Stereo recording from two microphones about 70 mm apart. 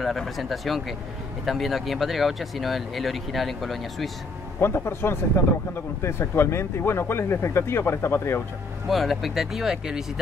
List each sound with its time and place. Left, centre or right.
0.0 s speech: centre
4.6 s speech: left
8.8 s speech: centre